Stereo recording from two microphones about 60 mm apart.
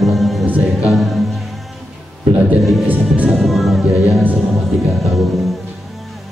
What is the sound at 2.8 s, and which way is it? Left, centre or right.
Speech, right.